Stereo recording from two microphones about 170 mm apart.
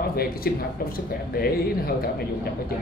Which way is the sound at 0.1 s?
60° left (ahead or behind).